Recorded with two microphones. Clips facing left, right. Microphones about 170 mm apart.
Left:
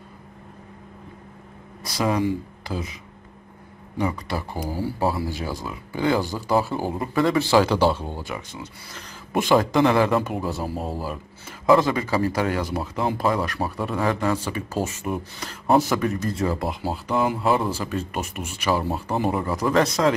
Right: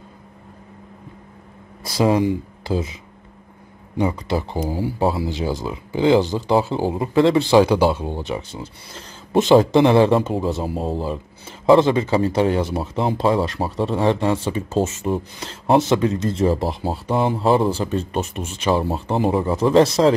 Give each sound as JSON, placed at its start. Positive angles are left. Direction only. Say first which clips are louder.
{"t": 1.9, "sound": "speech", "louder": "right 5 dB", "side_deg": -25}
{"t": 4.0, "sound": "speech", "louder": "right 5 dB", "side_deg": -25}